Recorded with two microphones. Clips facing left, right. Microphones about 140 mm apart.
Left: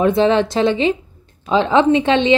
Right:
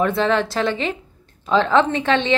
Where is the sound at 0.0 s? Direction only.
20° left (ahead or behind).